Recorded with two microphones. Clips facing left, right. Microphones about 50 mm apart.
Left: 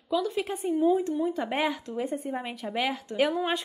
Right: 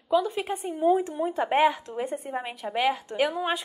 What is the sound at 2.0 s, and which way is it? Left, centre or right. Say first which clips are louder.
Speech: left 1 dB; right.